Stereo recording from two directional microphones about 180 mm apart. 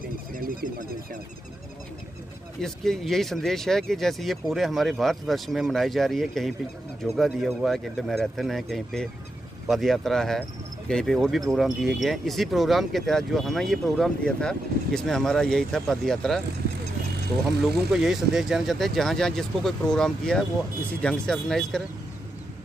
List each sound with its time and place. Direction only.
0.3 s speech: 50° right (ahead or behind)
2.6 s speech: 5° left (ahead or behind)
17.9 s speech: centre (ahead or behind)